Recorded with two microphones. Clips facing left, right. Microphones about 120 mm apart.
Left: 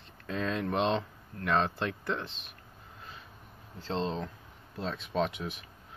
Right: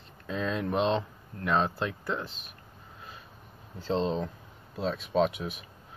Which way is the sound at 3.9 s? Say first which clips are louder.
Right 4 dB; 15° right (ahead or behind).